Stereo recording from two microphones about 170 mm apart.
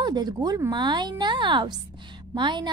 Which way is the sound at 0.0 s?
25° right (ahead or behind).